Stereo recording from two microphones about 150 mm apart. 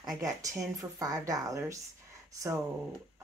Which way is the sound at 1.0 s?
25° right (ahead or behind).